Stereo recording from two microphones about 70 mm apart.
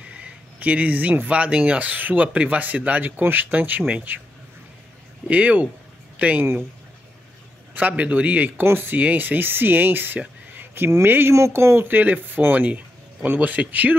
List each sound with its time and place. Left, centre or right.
0.0 s speech: centre
5.3 s speech: right
7.7 s speech: right
11.3 s speech: right
11.9 s speech: right